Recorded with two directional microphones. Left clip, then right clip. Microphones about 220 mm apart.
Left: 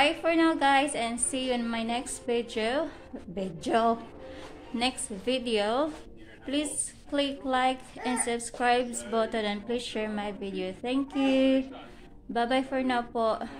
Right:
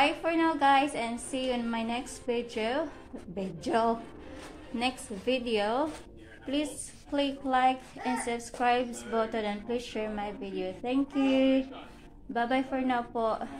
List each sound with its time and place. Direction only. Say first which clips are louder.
0.0 s a woman's voice: left 2 dB; 15° left (ahead or behind)